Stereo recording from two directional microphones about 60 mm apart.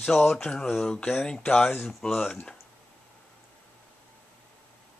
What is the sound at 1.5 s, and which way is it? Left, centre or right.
Speech, left.